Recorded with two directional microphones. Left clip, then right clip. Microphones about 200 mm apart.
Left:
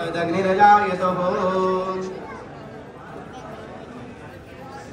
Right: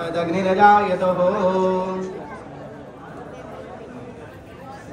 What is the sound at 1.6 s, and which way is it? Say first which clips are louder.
Music: right 1 dB; 25° right (ahead or behind).